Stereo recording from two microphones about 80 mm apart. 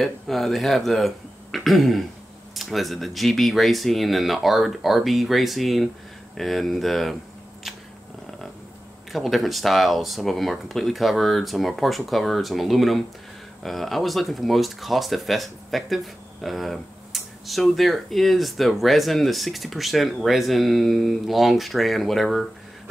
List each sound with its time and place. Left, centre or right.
0.0 s speech: centre
9.1 s speech: centre